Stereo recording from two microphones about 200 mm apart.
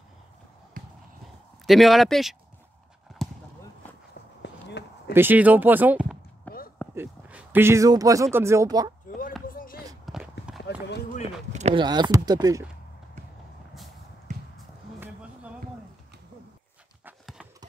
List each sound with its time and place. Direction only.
0.8 s a sound: 45° right (ahead or behind)
1.7 s speech: centre (ahead or behind)
3.2 s basketball bounce: centre (ahead or behind)
4.4 s a sound: 60° left (ahead or behind)
5.1 s speech: 10° right (ahead or behind)
6.5 s a sound: 10° left (ahead or behind)
7.0 s speech: 10° right (ahead or behind)
9.5 s a sound: 45° left (ahead or behind)
10.0 s walk: centre (ahead or behind)
10.7 s run: 55° left (ahead or behind)
11.5 s speech: 30° right (ahead or behind)
17.0 s clip-clop: 5° right (ahead or behind)